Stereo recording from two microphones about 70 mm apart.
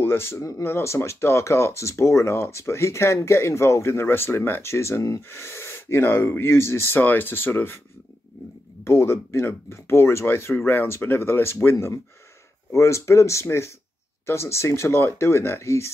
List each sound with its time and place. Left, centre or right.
0.0 s speech: left
0.7 s speech: left
8.8 s speech: left
11.7 s speech: left